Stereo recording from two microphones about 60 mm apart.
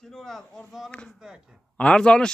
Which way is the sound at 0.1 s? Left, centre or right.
Centre.